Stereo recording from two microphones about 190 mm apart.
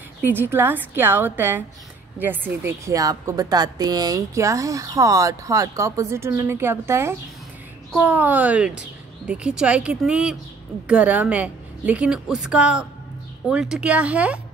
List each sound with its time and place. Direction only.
0.3 s a woman's voice: 10° right (ahead or behind)